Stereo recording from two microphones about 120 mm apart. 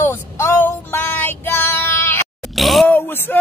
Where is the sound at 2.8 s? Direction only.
15° left (ahead or behind).